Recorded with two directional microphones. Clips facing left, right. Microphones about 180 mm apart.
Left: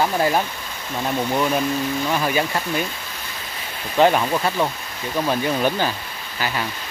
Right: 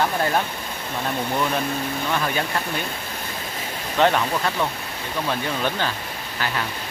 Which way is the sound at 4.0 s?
5° left (ahead or behind).